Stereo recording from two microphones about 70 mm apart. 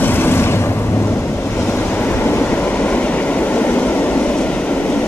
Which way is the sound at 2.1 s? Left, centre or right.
Left.